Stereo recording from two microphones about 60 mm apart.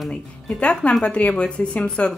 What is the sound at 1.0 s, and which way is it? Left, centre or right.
A woman's voice, centre.